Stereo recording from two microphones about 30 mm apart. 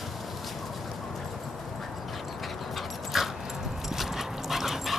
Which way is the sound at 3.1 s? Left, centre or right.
Centre.